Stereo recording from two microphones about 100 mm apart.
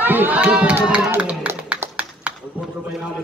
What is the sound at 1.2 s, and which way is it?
Clapping, 10° right (ahead or behind).